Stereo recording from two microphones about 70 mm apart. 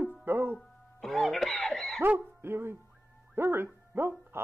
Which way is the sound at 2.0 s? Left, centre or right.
Right.